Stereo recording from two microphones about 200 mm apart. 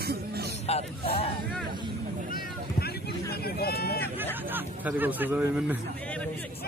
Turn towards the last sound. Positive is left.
turn(degrees=-5)  # may be behind; listen again after turning